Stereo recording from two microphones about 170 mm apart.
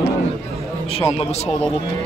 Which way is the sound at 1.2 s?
40° left (ahead or behind).